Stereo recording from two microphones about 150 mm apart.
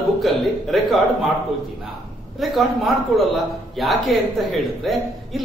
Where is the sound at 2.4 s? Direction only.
Centre (ahead or behind).